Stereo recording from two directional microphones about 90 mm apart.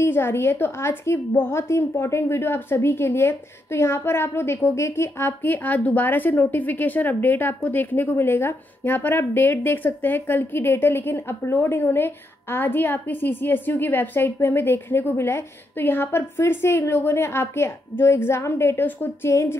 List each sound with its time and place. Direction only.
0.0 s a woman's voice: 25° left (ahead or behind)